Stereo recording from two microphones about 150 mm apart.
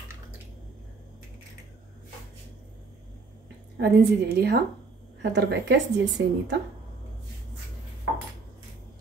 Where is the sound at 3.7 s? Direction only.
90° right.